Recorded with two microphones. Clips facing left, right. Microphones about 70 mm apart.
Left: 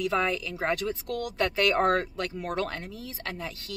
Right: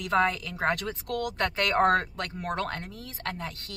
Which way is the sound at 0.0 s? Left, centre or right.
Right.